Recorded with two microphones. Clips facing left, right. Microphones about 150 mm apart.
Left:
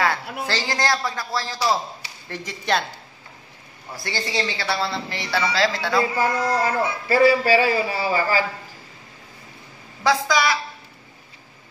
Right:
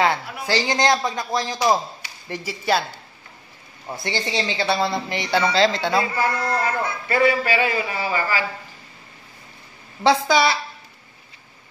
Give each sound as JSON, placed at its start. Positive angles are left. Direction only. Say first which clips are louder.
{"t": 0.5, "sound": "speech", "louder": "right 5 dB", "side_deg": -15}
{"t": 3.9, "sound": "speech", "louder": "right 2 dB", "side_deg": -20}
{"t": 6.1, "sound": "speech", "louder": "left 1 dB", "side_deg": 15}
{"t": 7.1, "sound": "a man's voice", "louder": "left 3 dB", "side_deg": 35}
{"t": 10.0, "sound": "speech", "louder": "right 3 dB", "side_deg": -30}